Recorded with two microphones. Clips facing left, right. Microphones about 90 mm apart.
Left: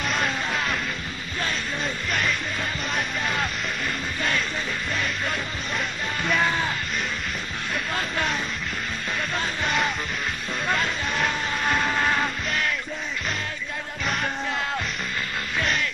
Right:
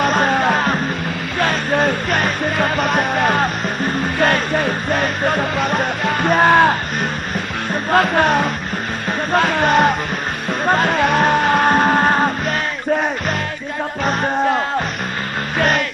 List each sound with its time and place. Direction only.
0.0 s music: 50° right (ahead or behind)
7.9 s music: 60° right (ahead or behind)
14.0 s music: 45° right (ahead or behind)